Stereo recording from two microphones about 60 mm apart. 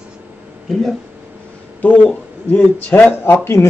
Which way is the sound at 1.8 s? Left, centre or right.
Left.